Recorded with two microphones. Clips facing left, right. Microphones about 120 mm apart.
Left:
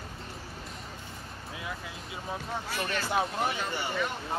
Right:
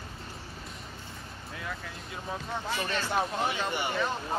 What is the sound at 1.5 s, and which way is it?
Music, 10° left (ahead or behind).